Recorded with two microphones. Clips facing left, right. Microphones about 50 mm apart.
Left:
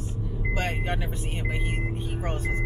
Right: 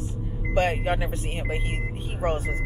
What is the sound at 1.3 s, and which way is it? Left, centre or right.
Speech, centre.